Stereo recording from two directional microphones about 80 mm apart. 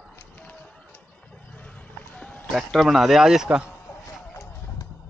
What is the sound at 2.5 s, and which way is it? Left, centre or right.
A man's voice, centre.